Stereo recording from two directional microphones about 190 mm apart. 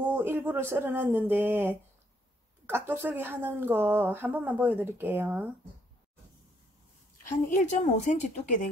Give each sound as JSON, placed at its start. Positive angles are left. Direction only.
{"t": 0.0, "sound": "a woman's voice", "side_deg": -10}
{"t": 2.9, "sound": "a woman's voice", "side_deg": -10}
{"t": 7.4, "sound": "a woman's voice", "side_deg": 40}